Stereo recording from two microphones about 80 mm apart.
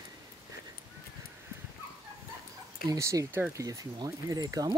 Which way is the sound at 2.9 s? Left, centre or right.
Right.